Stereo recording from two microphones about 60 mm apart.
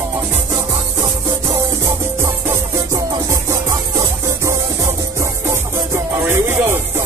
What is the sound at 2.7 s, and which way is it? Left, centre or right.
Music, right.